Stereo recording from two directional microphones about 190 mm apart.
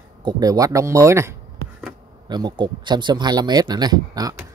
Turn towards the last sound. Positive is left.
turn(degrees=-20)  # may be behind; listen again after turning